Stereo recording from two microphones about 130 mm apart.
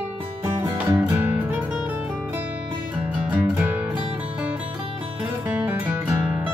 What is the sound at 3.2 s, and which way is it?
Music, 10° right (ahead or behind).